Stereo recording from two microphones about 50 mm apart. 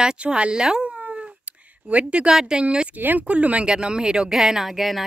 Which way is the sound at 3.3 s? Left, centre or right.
Right.